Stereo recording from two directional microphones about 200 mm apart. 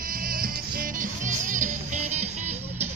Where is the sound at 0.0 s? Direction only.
45° right (ahead or behind).